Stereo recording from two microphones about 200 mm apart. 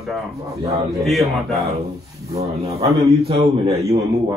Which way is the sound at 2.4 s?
30° right (ahead or behind).